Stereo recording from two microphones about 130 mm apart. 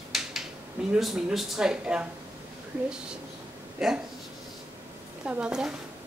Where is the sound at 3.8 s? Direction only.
Centre (ahead or behind).